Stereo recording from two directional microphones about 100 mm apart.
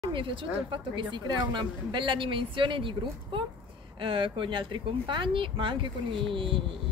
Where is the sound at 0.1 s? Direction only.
60° right (ahead or behind).